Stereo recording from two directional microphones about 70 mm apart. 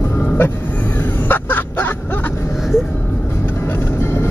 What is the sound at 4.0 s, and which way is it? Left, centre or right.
Vehicle, left.